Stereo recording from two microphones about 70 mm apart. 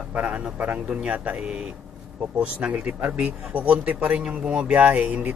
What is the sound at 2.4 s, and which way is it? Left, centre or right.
Speech, centre.